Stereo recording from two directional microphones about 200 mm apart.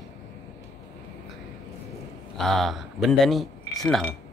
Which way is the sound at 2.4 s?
Centre (ahead or behind).